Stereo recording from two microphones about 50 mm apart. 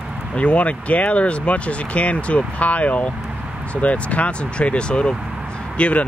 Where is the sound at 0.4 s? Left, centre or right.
Left.